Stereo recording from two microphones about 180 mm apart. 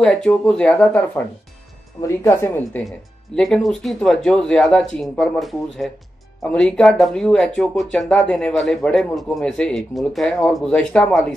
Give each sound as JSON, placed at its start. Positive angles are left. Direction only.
{"t": 0.0, "sound": "speech", "side_deg": 5}